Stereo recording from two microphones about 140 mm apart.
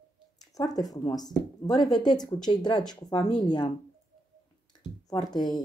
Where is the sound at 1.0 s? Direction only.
30° left (ahead or behind).